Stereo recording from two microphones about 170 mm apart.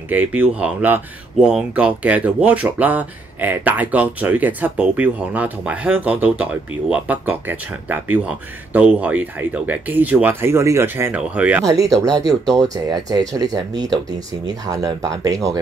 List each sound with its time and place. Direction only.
0.1 s speech: 10° right (ahead or behind)
11.6 s speech: 20° right (ahead or behind)